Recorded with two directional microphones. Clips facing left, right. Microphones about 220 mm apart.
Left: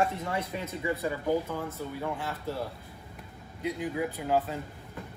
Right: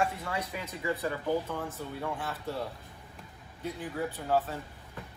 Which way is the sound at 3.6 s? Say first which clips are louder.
Left 4 dB; 10° left (ahead or behind).